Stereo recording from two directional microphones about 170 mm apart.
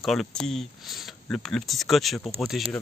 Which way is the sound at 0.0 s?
Centre (ahead or behind).